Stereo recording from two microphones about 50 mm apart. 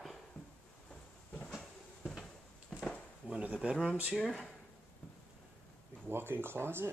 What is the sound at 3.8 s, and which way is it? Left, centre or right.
Speech, right.